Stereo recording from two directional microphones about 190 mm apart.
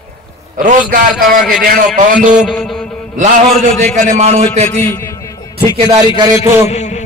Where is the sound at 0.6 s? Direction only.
45° right (ahead or behind).